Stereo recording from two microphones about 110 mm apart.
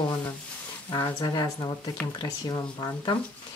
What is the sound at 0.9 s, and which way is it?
Speech, 40° left (ahead or behind).